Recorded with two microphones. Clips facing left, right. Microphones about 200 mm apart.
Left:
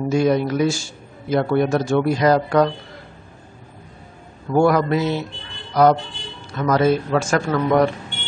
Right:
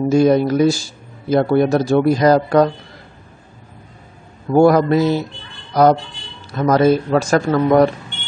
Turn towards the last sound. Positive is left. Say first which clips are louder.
# right 4 dB
turn(degrees=-35)  # may be behind; listen again after turning